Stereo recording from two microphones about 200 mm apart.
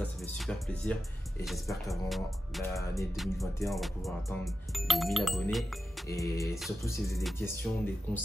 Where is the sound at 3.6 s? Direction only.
Centre (ahead or behind).